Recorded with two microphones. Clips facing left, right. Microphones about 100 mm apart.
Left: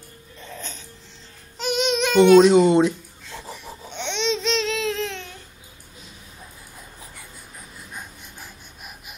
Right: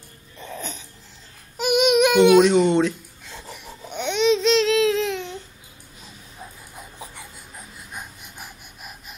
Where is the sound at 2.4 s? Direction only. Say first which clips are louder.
Left 2 dB; 10° left (ahead or behind).